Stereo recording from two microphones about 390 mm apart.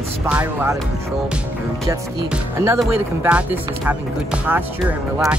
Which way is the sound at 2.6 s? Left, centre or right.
Centre.